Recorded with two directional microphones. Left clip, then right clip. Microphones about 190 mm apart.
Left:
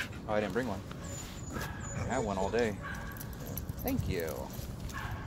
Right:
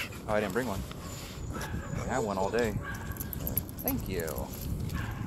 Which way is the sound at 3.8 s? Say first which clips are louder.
Even; 25° right (ahead or behind).